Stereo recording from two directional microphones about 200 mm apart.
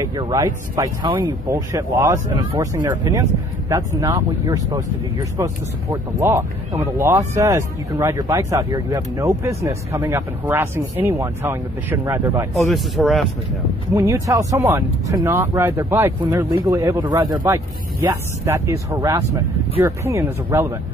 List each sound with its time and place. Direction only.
0.0 s speech: 20° right (ahead or behind)
12.5 s a man's voice: centre (ahead or behind)
13.9 s speech: 15° right (ahead or behind)